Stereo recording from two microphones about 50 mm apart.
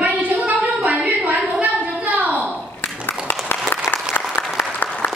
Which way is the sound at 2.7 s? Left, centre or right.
Left.